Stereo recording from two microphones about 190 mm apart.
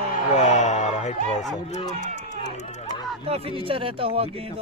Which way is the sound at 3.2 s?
30° right (ahead or behind).